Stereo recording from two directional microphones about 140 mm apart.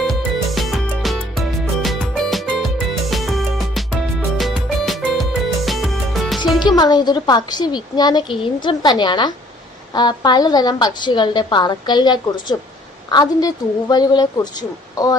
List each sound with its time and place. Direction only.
0.0 s music: centre (ahead or behind)
6.6 s a woman's voice: 30° left (ahead or behind)